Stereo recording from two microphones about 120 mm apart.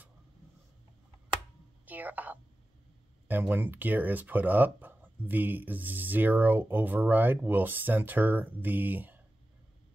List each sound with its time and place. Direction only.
1.9 s a woman's voice: 15° right (ahead or behind)